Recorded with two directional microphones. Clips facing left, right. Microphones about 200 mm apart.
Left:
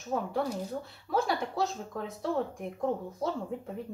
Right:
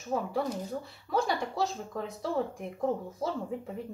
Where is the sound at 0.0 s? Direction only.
Centre (ahead or behind).